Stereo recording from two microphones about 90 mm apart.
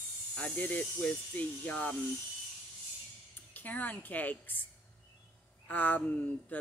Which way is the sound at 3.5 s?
20° left (ahead or behind).